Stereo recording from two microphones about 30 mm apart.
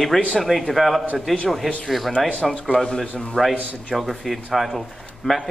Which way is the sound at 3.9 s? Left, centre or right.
Centre.